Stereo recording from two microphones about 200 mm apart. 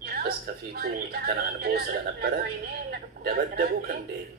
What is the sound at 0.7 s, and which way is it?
Speech, 50° right (ahead or behind).